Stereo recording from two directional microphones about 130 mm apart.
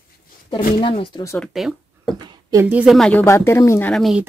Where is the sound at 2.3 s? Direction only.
25° right (ahead or behind).